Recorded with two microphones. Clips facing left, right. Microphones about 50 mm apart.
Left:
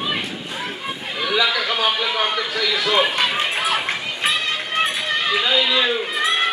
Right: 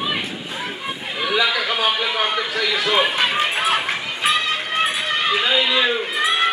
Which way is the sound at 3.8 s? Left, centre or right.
Centre.